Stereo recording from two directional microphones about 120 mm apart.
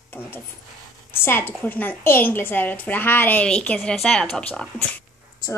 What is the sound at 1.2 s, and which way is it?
A woman's voice, 15° left (ahead or behind).